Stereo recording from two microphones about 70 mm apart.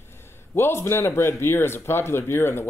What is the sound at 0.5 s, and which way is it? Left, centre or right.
Speech, left.